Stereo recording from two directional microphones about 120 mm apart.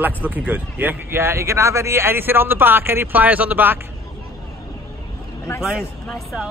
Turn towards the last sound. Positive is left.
turn(degrees=0)  # may be behind; listen again after turning